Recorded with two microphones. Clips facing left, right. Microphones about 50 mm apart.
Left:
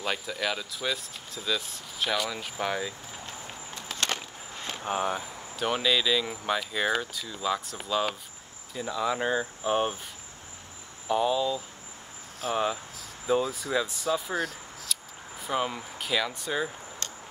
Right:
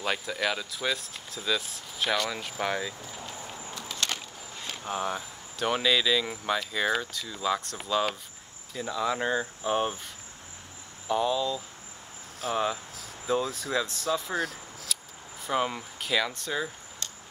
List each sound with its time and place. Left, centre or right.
0.0 s speech: centre
3.7 s skateboard: left
4.7 s speech: centre
5.1 s speech: centre
11.1 s speech: centre